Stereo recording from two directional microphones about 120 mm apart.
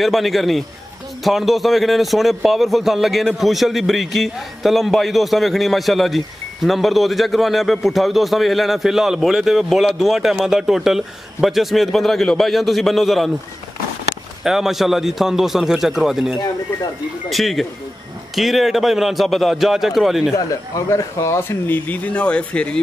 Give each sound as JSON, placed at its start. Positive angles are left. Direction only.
{"t": 0.0, "sound": "a man's voice", "side_deg": 0}
{"t": 14.4, "sound": "a man's voice", "side_deg": -5}
{"t": 20.3, "sound": "speech", "side_deg": 30}